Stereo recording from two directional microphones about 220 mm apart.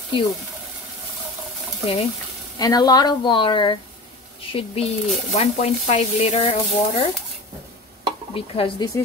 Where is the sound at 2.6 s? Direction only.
15° left (ahead or behind).